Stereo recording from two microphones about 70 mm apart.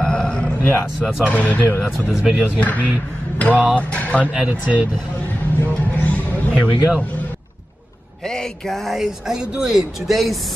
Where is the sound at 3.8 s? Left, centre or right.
Left.